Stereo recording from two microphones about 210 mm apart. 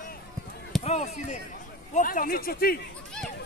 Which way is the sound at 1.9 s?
40° left (ahead or behind).